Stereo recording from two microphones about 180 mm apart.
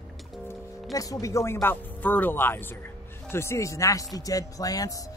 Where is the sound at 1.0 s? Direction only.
20° left (ahead or behind).